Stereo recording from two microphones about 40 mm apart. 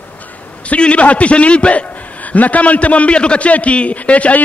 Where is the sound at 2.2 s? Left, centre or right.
Left.